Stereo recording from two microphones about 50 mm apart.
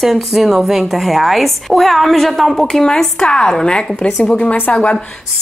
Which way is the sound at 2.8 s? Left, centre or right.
Centre.